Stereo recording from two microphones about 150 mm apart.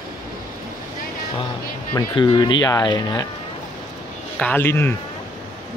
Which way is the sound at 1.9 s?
30° left (ahead or behind).